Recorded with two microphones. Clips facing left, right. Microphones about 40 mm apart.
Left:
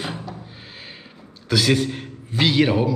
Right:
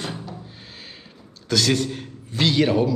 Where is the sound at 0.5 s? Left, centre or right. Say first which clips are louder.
Left 2 dB; centre.